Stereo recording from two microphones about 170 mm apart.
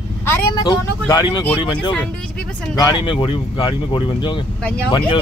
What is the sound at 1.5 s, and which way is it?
Speech, 30° left (ahead or behind).